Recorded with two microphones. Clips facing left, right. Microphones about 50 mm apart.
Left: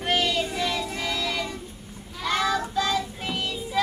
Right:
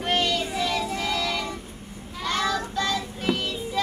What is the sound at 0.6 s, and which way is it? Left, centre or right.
Music, centre.